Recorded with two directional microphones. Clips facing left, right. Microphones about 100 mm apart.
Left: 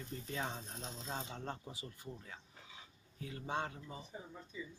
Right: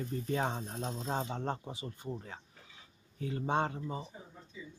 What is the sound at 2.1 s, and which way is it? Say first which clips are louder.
Speech: right 8 dB; 40° right (ahead or behind).